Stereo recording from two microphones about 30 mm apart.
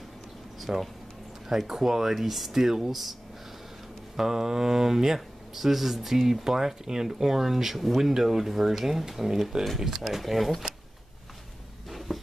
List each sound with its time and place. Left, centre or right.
0.6 s speech: centre
4.2 s speech: centre
7.7 s speech: centre
8.1 s speech: centre
10.0 s speech: centre
12.1 s a sound: centre